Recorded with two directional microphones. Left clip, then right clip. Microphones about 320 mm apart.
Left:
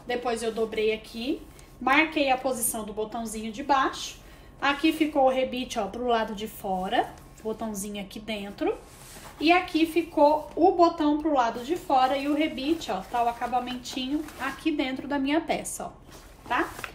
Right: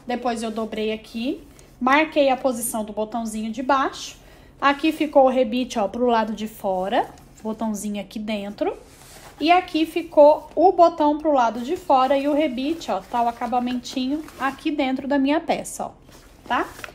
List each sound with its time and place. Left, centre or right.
0.1 s a woman's voice: right